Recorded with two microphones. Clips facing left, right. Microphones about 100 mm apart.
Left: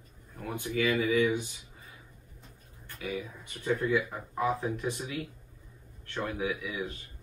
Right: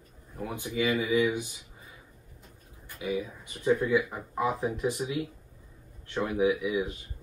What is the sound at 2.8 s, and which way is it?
Speech, 15° right (ahead or behind).